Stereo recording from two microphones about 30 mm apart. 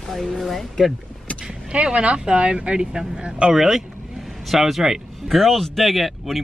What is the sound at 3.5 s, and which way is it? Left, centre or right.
Speech, centre.